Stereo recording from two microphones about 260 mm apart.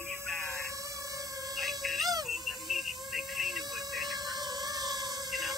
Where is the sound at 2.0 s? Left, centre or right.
Centre.